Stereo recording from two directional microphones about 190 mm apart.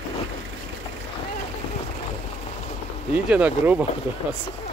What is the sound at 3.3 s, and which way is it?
Speech, 10° right (ahead or behind).